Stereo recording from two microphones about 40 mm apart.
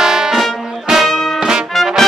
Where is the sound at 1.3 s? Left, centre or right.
Centre.